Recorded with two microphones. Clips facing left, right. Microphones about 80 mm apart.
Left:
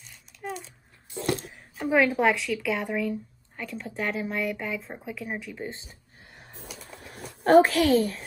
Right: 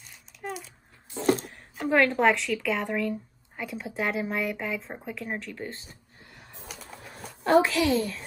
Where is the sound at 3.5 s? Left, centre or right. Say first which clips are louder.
Right 1 dB; centre.